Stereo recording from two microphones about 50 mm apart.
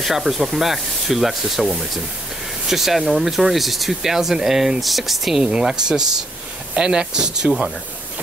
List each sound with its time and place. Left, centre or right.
0.0 s speech: centre
5.4 s speech: centre